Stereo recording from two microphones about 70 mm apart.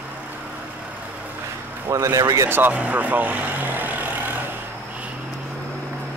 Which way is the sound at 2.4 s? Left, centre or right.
Right.